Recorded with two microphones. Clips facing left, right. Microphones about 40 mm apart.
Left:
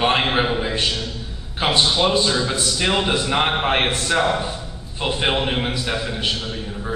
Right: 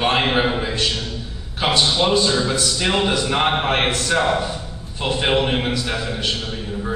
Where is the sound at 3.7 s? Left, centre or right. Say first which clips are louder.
Even; centre.